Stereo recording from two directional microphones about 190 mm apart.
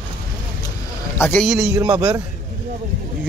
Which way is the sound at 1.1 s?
10° left (ahead or behind).